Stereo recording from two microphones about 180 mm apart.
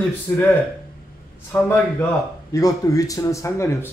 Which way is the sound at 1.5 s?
10° left (ahead or behind).